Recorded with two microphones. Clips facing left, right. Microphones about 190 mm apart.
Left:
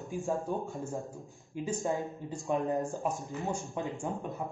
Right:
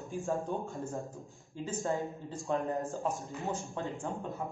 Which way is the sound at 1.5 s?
15° left (ahead or behind).